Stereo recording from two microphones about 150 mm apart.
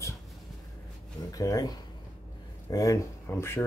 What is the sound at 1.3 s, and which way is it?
Speech, 25° left (ahead or behind).